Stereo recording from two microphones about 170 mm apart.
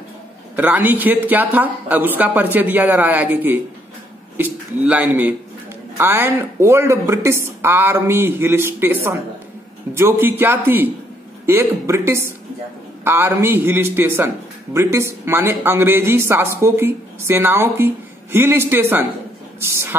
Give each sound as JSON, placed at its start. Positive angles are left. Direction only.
{"t": 0.6, "sound": "a man's voice", "side_deg": -10}